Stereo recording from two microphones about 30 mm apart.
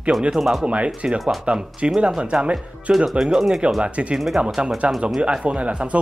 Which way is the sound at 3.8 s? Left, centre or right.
Right.